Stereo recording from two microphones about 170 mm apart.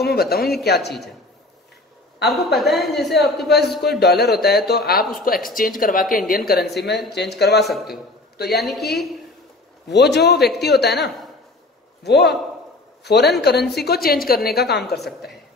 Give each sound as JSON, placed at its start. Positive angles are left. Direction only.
{"t": 0.0, "sound": "a woman's voice", "side_deg": 65}
{"t": 2.2, "sound": "a woman's voice", "side_deg": 0}
{"t": 4.0, "sound": "a woman's voice", "side_deg": 70}
{"t": 5.2, "sound": "a woman's voice", "side_deg": 55}
{"t": 7.6, "sound": "a woman's voice", "side_deg": 0}
{"t": 9.8, "sound": "a woman's voice", "side_deg": 80}
{"t": 15.0, "sound": "a woman's voice", "side_deg": 0}